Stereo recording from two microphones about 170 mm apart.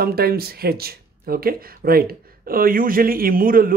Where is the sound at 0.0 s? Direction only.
65° right (ahead or behind).